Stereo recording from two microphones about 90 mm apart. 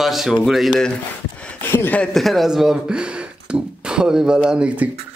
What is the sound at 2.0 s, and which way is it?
Speech, centre (ahead or behind).